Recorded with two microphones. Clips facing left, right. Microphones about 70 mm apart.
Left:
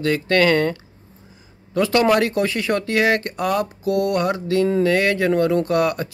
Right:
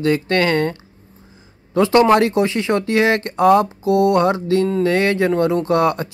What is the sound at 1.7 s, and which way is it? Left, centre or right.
Speech, right.